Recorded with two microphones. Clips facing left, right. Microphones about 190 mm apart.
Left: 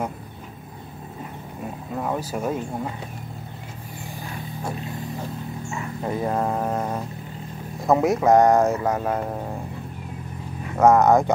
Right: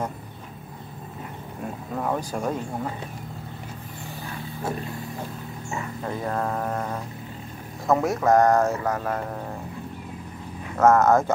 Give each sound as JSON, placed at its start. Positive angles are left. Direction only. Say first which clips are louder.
{"t": 2.0, "sound": "speech", "louder": "even", "side_deg": 5}
{"t": 6.0, "sound": "speech", "louder": "left 4 dB", "side_deg": 20}
{"t": 10.8, "sound": "speech", "louder": "left 2 dB", "side_deg": 15}